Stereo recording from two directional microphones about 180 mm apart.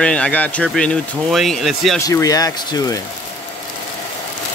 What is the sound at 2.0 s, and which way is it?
Speech, 20° left (ahead or behind).